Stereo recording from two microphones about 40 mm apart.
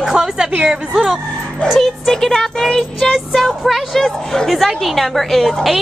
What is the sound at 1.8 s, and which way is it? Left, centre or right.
Speech, centre.